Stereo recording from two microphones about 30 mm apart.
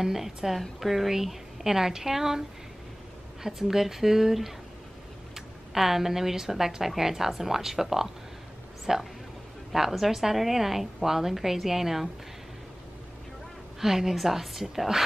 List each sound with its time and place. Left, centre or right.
0.0 s a woman's voice: centre
3.4 s a woman's voice: centre
13.7 s a woman's voice: centre